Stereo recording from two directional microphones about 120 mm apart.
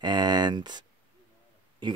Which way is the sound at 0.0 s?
35° right (ahead or behind).